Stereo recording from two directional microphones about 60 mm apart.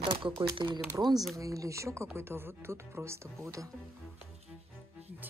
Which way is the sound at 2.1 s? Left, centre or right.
Right.